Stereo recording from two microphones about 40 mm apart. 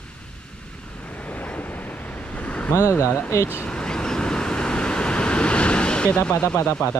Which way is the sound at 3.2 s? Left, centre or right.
Left.